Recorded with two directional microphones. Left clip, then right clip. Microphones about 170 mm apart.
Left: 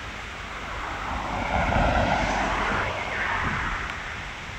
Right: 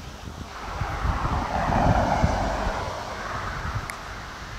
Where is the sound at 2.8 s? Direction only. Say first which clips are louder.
Left 4 dB; 60° right (ahead or behind).